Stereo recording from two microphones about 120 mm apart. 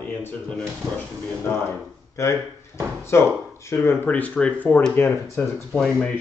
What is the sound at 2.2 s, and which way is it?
Speech, 25° left (ahead or behind).